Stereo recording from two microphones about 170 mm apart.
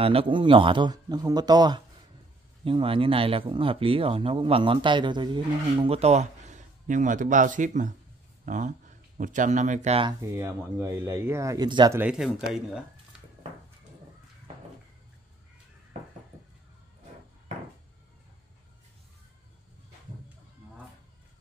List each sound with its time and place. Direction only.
0.0 s speech: 35° right (ahead or behind)
10.0 s speech: 20° right (ahead or behind)
12.0 s speech: 5° right (ahead or behind)